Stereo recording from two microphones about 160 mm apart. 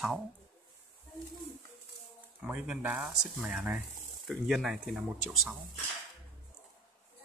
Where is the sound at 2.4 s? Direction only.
5° right (ahead or behind).